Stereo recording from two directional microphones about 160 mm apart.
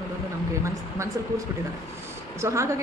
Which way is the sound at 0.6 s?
15° right (ahead or behind).